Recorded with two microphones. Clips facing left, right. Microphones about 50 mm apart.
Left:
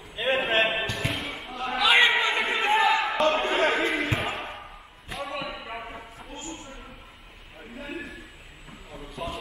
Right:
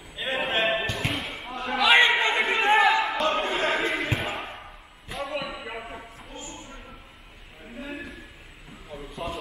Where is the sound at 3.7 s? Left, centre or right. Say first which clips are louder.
Left 1 dB; centre.